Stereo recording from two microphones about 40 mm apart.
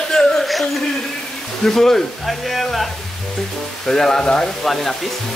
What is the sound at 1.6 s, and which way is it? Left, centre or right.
Speech, centre.